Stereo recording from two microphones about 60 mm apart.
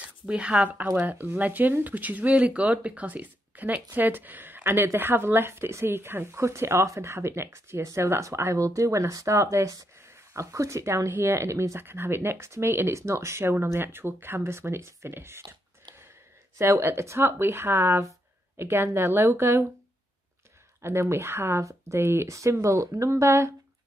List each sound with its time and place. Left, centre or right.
0.3 s speech: centre; by 9.8 s right
10.0 s speech: right
11.1 s speech: right
16.5 s speech: right
20.8 s speech: right
21.6 s speech: right